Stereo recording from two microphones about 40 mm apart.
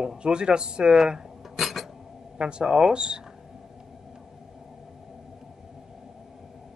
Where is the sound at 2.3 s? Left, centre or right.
Right.